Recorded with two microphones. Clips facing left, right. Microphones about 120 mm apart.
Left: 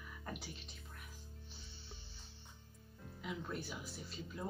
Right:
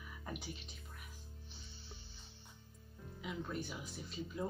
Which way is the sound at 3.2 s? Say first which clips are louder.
Right 1 dB; centre (ahead or behind).